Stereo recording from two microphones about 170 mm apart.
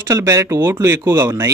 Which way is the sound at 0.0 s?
20° right (ahead or behind).